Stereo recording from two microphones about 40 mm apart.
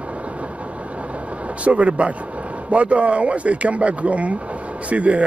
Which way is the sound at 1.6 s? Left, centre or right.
Right.